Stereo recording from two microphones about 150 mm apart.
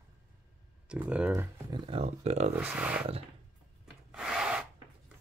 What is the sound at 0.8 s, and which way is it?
Speech, 10° right (ahead or behind).